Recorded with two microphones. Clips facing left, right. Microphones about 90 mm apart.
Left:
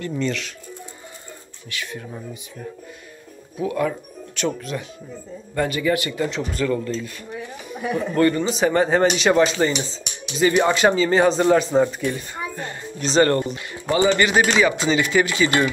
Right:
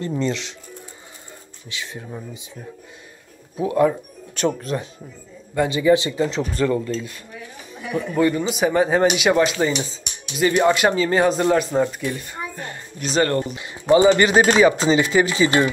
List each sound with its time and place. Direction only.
0.1 s speech: 25° right (ahead or behind)
1.7 s speech: 25° right (ahead or behind)
3.5 s speech: 25° right (ahead or behind)
5.7 s speech: 20° right (ahead or behind)
8.1 s speech: 5° right (ahead or behind)
13.6 s speech: 20° right (ahead or behind)